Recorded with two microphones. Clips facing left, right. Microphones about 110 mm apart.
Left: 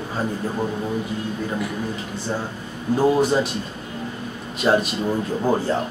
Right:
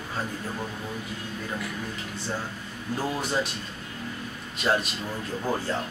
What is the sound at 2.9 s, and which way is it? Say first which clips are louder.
Speech: left 11 dB; 30° left (ahead or behind).